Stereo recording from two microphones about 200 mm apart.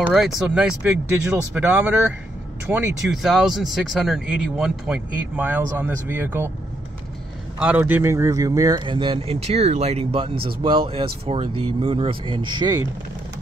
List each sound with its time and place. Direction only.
0.0 s speech: centre (ahead or behind)
7.6 s speech: 10° right (ahead or behind)